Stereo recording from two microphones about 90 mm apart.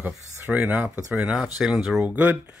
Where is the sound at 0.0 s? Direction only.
20° right (ahead or behind).